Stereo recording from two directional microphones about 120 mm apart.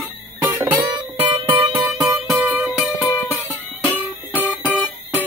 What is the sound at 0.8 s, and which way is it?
Music, 45° right (ahead or behind).